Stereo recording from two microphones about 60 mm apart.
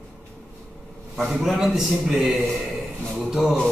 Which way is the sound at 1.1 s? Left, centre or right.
Centre.